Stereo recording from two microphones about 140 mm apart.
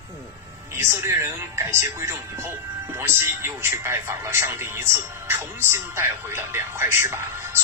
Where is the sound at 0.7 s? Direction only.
20° right (ahead or behind).